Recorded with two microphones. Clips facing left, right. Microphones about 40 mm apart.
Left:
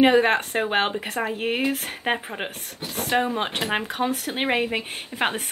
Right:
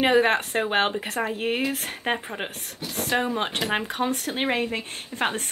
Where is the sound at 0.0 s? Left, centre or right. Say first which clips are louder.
Left 2 dB; centre.